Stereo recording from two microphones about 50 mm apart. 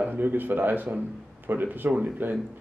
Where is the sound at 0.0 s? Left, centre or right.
Right.